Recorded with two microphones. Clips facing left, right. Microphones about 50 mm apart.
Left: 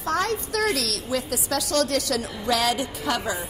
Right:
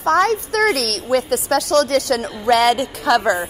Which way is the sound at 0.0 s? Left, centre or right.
Right.